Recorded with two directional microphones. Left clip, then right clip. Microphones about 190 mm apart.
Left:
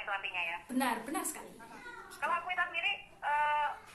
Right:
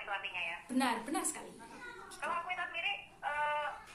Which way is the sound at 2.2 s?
25° left (ahead or behind).